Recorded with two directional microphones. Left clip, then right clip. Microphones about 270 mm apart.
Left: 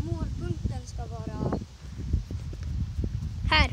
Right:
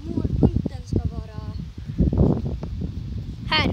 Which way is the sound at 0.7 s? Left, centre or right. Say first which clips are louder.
Right 9 dB; centre.